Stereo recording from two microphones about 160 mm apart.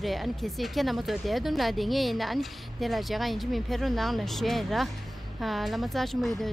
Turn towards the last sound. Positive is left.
turn(degrees=0)  # may be behind; listen again after turning